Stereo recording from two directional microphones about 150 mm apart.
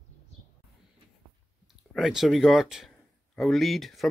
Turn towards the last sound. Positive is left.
turn(degrees=0)  # may be behind; listen again after turning